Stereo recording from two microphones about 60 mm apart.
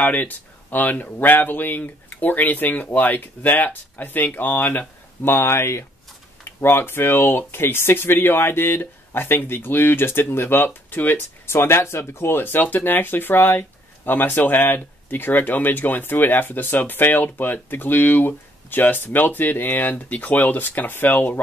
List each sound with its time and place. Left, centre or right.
0.0 s speech: left
11.6 s speech: left